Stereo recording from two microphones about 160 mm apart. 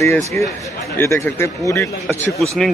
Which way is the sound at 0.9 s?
15° left (ahead or behind).